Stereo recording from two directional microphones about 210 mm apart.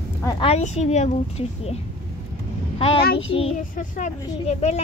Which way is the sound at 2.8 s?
25° left (ahead or behind).